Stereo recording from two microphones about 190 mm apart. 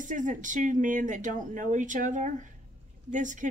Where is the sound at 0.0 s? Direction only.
40° right (ahead or behind).